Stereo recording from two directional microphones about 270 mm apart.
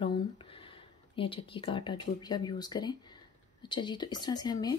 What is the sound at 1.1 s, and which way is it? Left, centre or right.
Speech, centre.